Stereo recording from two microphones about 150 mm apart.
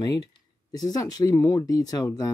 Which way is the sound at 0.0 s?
25° left (ahead or behind).